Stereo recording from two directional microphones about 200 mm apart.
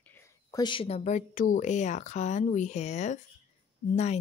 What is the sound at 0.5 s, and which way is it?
Speech, 25° left (ahead or behind).